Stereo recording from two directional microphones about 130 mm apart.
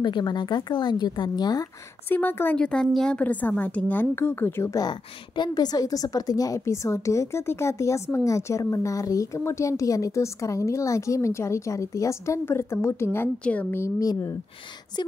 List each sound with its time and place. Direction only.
0.0 s speech: 35° left (ahead or behind)
2.0 s a woman's voice: 15° left (ahead or behind)